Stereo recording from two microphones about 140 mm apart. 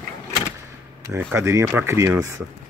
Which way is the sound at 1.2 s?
15° right (ahead or behind).